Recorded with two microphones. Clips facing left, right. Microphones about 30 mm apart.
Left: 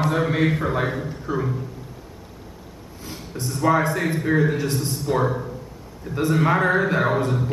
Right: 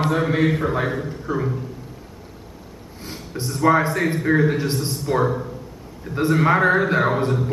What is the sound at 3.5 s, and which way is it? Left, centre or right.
Speech, centre.